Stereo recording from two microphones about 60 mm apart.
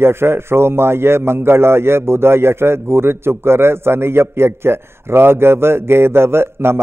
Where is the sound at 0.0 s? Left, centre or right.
Right.